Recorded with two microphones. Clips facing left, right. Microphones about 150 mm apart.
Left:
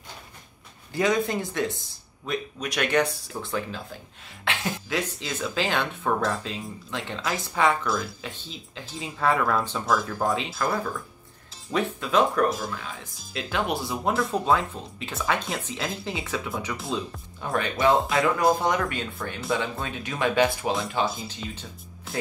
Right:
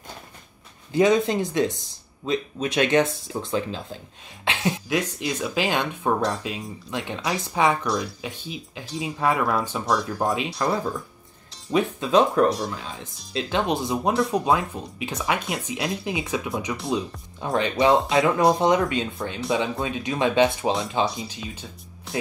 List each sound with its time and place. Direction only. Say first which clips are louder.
0.9 s speech: right 5 dB; 20° right (ahead or behind)
7.8 s speech: right 2 dB; centre (ahead or behind)
8.2 s speech: right 4 dB; 15° right (ahead or behind)
12.4 s speech: right 4 dB; centre (ahead or behind)
12.8 s speech: right 2 dB; 20° right (ahead or behind)